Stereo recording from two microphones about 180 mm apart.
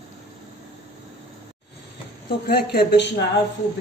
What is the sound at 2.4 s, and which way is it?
Speech, 60° left (ahead or behind).